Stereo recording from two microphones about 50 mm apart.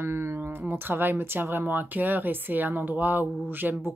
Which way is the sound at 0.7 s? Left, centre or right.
Right.